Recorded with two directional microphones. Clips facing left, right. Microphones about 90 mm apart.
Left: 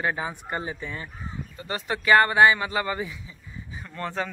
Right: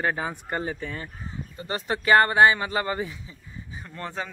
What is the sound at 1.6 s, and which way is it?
Speech, 25° right (ahead or behind).